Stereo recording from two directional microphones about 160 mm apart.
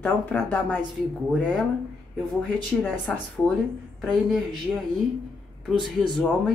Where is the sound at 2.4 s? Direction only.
10° left (ahead or behind).